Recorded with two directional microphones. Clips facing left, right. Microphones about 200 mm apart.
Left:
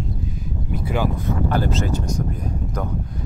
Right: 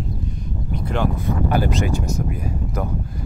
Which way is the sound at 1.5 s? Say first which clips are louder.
Right 2 dB; 15° right (ahead or behind).